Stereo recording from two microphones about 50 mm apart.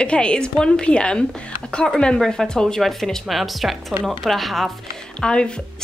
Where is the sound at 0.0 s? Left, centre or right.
Centre.